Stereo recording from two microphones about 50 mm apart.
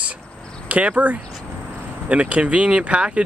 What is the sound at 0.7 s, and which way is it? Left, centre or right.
Speech, right.